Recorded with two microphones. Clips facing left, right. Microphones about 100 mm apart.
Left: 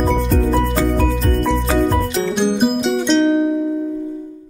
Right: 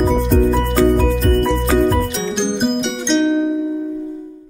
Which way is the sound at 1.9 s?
Centre (ahead or behind).